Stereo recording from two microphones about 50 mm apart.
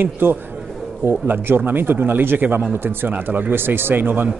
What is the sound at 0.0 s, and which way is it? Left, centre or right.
Speech, right.